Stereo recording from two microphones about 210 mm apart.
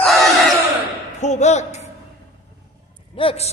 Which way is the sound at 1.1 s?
35° left (ahead or behind).